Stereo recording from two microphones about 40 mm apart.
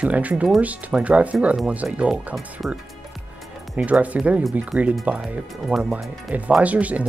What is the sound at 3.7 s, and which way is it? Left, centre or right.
Speech, right.